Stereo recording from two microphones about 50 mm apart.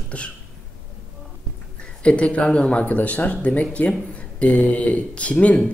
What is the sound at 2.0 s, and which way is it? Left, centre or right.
Speech, left.